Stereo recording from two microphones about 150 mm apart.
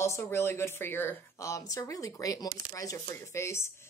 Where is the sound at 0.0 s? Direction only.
20° left (ahead or behind).